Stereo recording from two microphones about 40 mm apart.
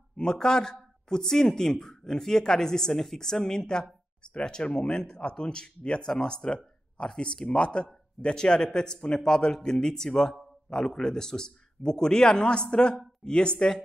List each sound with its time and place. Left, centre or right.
0.2 s a man's voice: centre